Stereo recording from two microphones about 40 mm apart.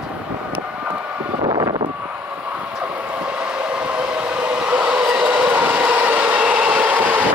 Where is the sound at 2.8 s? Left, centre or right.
Right.